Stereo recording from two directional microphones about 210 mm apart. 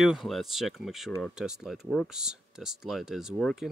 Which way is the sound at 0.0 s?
Centre (ahead or behind).